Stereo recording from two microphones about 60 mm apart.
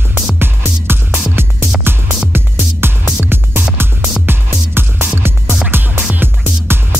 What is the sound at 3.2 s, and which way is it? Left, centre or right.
Music, right.